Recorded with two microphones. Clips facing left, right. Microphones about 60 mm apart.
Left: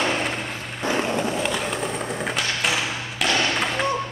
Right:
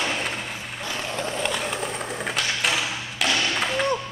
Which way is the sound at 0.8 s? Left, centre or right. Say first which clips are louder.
Left 9 dB; left.